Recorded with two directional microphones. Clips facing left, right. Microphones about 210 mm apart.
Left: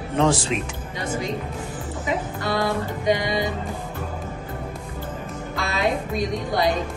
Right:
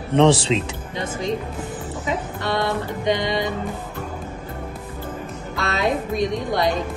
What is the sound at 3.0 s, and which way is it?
Speech, 20° right (ahead or behind).